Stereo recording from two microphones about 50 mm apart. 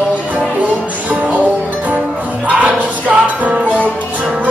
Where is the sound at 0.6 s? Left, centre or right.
Right.